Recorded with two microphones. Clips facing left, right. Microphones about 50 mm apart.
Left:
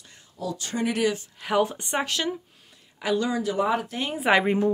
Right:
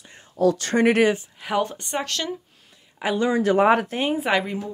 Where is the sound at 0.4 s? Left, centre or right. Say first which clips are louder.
Right 10 dB; right.